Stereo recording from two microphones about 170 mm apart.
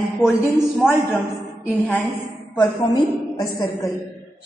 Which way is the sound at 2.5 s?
20° left (ahead or behind).